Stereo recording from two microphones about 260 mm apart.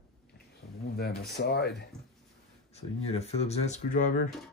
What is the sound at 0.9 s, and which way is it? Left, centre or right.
Speech, left.